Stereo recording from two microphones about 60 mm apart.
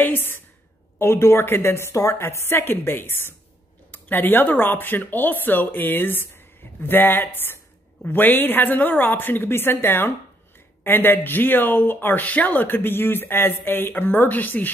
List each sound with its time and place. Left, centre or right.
0.0 s a sound: left
0.9 s a woman's voice: left
2.2 s speech: left